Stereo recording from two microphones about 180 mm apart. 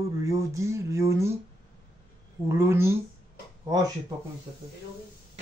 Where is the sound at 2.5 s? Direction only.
15° right (ahead or behind).